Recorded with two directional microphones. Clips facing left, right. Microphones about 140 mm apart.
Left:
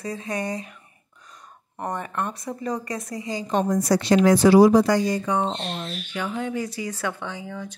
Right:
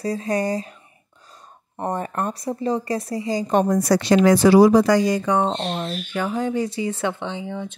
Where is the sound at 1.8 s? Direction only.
35° right (ahead or behind).